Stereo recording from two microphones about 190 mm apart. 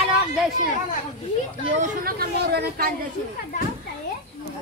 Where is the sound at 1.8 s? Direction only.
50° right (ahead or behind).